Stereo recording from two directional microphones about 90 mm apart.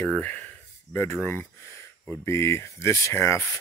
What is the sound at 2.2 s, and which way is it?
Speech, 30° left (ahead or behind).